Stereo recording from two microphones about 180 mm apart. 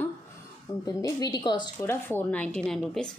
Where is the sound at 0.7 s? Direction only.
20° left (ahead or behind).